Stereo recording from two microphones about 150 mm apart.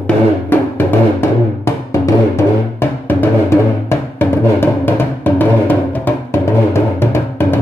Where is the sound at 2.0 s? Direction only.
15° left (ahead or behind).